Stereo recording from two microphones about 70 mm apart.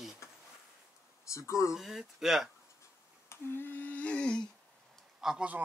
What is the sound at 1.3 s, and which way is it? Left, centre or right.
Speech, left.